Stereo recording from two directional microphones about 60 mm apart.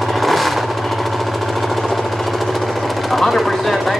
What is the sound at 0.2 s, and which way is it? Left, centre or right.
Vehicle, centre.